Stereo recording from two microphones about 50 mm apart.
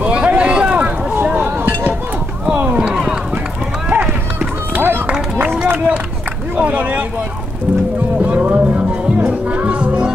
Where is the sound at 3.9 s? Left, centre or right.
Right.